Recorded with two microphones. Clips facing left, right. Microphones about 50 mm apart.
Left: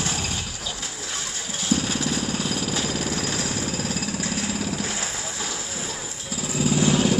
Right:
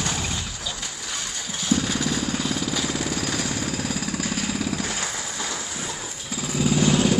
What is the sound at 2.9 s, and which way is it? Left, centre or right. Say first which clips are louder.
Vehicle: even; centre.